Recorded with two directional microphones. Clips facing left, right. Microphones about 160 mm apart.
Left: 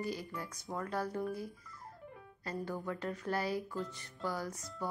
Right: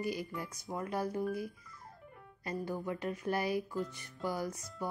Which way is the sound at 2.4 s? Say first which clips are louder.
Right 2 dB; 15° right (ahead or behind).